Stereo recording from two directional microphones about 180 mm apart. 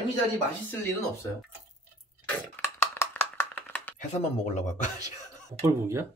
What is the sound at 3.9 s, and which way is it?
Speech, 40° left (ahead or behind).